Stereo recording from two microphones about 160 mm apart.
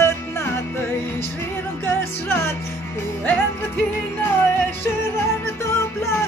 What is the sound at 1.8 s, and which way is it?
Music, 15° left (ahead or behind).